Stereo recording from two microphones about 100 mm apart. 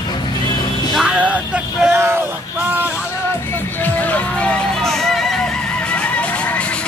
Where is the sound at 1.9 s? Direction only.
25° right (ahead or behind).